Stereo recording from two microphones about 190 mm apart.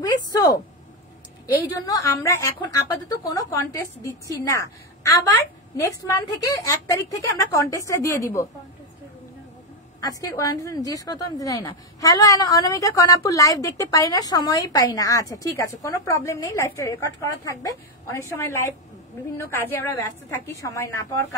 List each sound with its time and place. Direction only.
1.5 s a woman's voice: 20° left (ahead or behind)
9.9 s a woman's voice: 20° left (ahead or behind)